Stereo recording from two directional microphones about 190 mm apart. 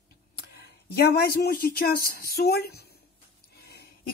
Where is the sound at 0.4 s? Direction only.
55° left (ahead or behind).